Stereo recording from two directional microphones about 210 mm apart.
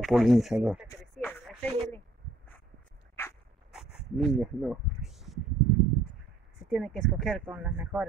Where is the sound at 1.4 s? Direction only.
Centre (ahead or behind).